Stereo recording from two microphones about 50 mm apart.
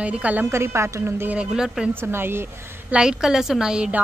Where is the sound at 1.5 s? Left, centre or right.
Centre.